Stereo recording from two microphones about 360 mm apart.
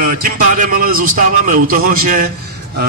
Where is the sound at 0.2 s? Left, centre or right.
Right.